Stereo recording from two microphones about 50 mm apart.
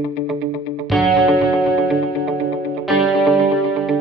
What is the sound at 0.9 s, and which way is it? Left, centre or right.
Music, centre.